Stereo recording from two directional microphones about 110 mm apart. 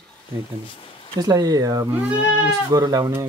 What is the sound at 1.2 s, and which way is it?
Speech, 35° right (ahead or behind).